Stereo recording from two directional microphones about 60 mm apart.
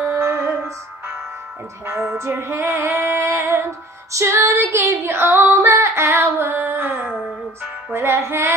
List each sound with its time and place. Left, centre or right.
0.0 s music: right
1.9 s female singing: right
4.1 s music: right
4.5 s female singing: right
5.0 s female singing: right